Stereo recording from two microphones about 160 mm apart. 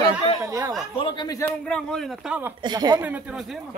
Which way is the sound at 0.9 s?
30° left (ahead or behind).